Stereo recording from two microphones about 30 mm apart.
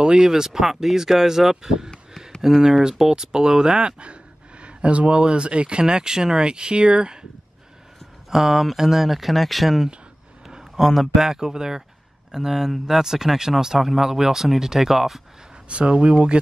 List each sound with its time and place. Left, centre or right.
0.0 s speech: right
0.3 s speech: centre
8.3 s speech: centre
11.1 s speech: centre
15.7 s speech: right